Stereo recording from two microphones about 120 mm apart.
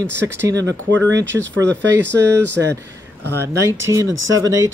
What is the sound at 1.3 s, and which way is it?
Speech, centre (ahead or behind).